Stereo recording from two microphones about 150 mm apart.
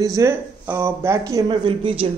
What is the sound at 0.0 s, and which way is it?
Speech, 20° right (ahead or behind).